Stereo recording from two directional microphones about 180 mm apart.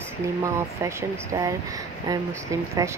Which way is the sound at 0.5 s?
15° right (ahead or behind).